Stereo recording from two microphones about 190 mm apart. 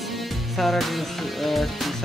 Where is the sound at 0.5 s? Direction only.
Centre (ahead or behind).